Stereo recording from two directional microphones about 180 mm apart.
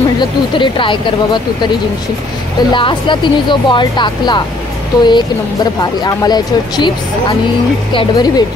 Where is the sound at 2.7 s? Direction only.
25° left (ahead or behind).